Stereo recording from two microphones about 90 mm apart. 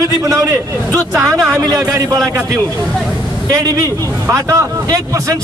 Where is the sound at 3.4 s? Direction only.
40° right (ahead or behind).